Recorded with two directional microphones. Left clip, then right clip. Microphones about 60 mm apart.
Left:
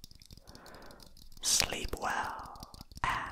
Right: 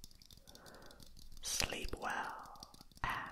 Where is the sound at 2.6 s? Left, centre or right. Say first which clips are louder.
Left 7 dB; left.